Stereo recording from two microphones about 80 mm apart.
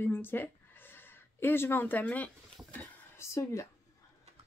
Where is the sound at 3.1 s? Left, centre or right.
Left.